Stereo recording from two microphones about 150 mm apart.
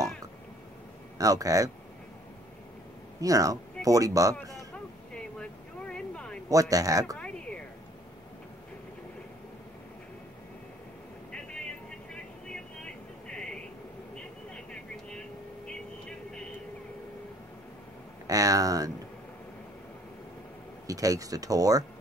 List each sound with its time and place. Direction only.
1.1 s speech: 25° right (ahead or behind)
3.2 s a man's voice: 20° right (ahead or behind)
5.1 s a sound: 5° left (ahead or behind)
6.5 s speech: 25° right (ahead or behind)
7.2 s a sound: 10° left (ahead or behind)
11.3 s vehicle: 5° left (ahead or behind)
18.2 s speech: 25° right (ahead or behind)
20.8 s speech: 25° right (ahead or behind)